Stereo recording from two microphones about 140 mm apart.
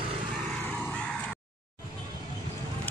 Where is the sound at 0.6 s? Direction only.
10° left (ahead or behind).